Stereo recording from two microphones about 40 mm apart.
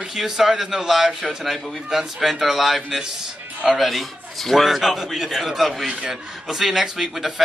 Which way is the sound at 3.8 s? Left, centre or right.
Centre.